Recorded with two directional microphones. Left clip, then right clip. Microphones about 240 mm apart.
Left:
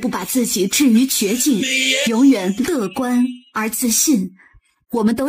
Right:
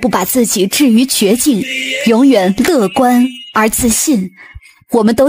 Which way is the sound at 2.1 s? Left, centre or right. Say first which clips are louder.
Right 6 dB; right.